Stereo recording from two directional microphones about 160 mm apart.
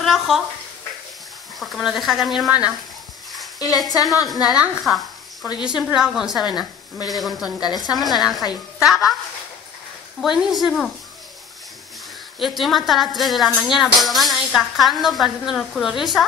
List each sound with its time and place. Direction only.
0.0 s a sound: centre (ahead or behind)
1.6 s speech: centre (ahead or behind)
3.5 s speech: 25° left (ahead or behind)
4.5 s a woman's voice: centre (ahead or behind)
7.6 s speech: 25° left (ahead or behind)
8.0 s a woman's voice: centre (ahead or behind)
10.2 s speech: centre (ahead or behind)
12.4 s speech: centre (ahead or behind)